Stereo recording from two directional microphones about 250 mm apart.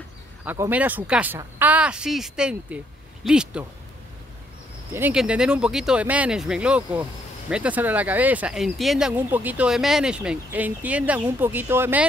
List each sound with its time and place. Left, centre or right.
0.5 s speech: centre
4.9 s speech: centre